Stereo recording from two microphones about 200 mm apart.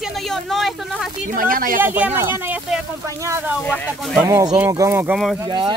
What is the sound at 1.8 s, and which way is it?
Speech, 10° right (ahead or behind).